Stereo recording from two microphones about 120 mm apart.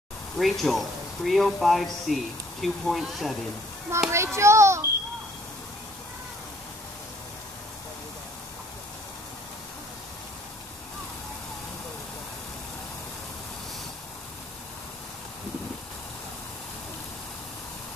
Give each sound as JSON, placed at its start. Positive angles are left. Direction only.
{"t": 0.4, "sound": "speech", "side_deg": 0}
{"t": 4.1, "sound": "a child's voice", "side_deg": -25}